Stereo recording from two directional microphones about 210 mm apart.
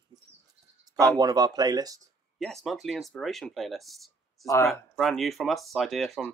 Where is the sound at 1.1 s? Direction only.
20° right (ahead or behind).